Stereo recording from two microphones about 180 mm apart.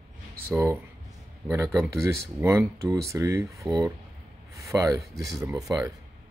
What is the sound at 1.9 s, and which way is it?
Speech, 15° right (ahead or behind).